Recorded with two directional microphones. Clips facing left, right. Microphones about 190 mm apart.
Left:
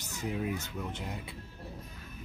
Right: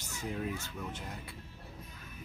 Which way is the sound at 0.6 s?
20° left (ahead or behind).